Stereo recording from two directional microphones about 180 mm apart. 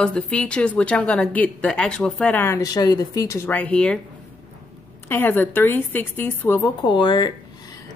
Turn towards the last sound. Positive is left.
turn(degrees=25)  # may be behind; listen again after turning